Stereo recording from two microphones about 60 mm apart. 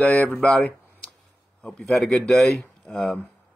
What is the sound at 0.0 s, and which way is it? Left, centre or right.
Speech, left.